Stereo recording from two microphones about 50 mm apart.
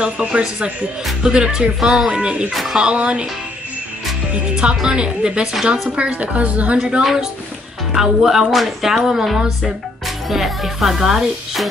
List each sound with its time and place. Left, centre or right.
0.0 s a woman's voice: centre
2.5 s speech: centre
2.8 s a woman's voice: right
4.6 s speech: centre
5.7 s a woman's voice: right
7.0 s speech: centre